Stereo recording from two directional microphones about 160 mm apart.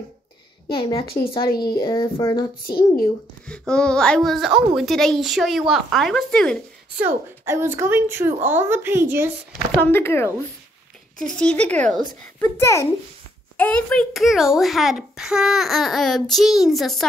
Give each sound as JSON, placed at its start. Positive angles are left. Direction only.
{"t": 0.7, "sound": "speech", "side_deg": 35}
{"t": 3.4, "sound": "a child's voice", "side_deg": 5}
{"t": 7.0, "sound": "a woman's voice", "side_deg": -15}
{"t": 9.8, "sound": "a child's voice", "side_deg": 15}